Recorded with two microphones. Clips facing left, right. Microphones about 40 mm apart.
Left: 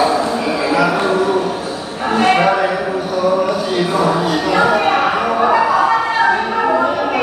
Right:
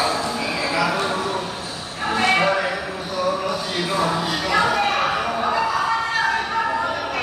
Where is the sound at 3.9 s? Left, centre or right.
Centre.